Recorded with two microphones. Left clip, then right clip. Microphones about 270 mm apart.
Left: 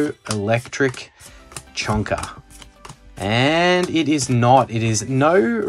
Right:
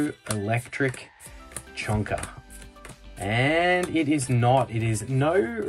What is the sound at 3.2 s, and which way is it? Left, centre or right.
Speech, centre.